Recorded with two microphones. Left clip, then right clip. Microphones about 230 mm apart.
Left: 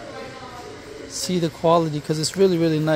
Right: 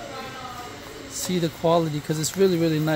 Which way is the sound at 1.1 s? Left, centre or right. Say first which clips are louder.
Left 2 dB; centre.